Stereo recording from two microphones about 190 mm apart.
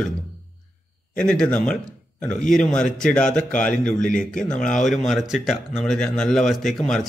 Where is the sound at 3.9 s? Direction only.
45° left (ahead or behind).